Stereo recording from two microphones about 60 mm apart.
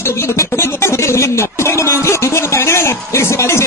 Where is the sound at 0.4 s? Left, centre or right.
Left.